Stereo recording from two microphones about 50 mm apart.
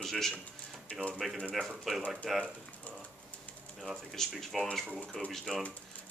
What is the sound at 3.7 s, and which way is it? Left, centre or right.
Speech, centre.